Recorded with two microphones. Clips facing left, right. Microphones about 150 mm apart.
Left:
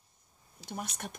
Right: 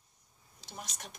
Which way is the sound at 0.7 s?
55° left (ahead or behind).